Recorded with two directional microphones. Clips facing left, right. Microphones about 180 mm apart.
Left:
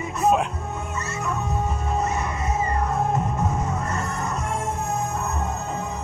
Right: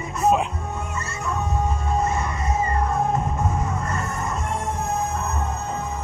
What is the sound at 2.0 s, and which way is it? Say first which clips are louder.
Music: right 1 dB; centre (ahead or behind).